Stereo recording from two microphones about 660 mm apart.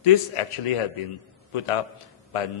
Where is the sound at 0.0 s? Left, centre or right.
Left.